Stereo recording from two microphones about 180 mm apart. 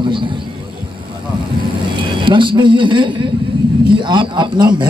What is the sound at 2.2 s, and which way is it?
A man's voice, 25° right (ahead or behind).